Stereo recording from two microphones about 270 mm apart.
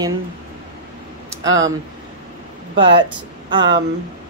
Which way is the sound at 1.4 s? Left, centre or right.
Right.